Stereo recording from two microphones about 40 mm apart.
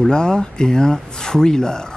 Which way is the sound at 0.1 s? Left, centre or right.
Centre.